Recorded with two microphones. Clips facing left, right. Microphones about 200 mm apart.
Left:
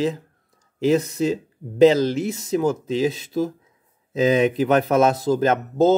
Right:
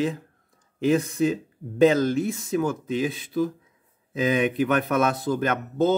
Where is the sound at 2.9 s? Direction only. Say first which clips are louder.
Left 4 dB; 40° left (ahead or behind).